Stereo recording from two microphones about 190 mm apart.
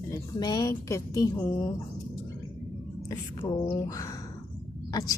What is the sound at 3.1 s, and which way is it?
Speech, 25° left (ahead or behind).